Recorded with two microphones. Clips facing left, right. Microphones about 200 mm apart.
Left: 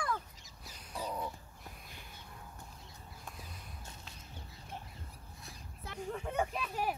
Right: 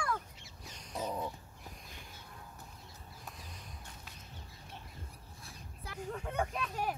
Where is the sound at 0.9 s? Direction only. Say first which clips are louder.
Right 2 dB; 20° right (ahead or behind).